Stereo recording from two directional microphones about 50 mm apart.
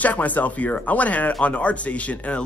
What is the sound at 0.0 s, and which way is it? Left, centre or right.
A man's voice, left.